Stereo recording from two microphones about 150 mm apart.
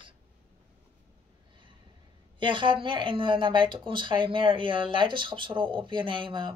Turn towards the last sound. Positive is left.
turn(degrees=-35)  # may be behind; listen again after turning